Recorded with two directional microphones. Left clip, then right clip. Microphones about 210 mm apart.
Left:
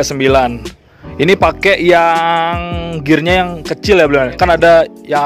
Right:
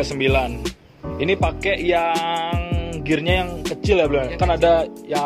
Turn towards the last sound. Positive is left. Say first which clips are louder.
# left 9 dB
turn(degrees=55)  # may be behind; listen again after turning